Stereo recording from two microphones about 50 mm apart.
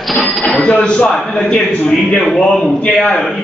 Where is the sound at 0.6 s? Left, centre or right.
Centre.